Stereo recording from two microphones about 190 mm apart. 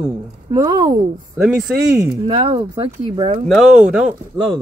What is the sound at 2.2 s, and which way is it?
Speech, 25° right (ahead or behind).